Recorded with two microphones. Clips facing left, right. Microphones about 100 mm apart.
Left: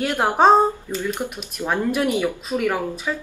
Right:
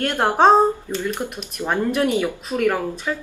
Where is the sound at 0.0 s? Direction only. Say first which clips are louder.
Right 1 dB; 5° left (ahead or behind).